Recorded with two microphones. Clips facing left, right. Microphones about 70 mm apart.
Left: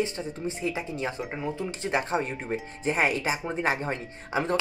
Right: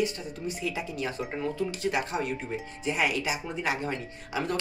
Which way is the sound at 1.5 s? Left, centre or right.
Left.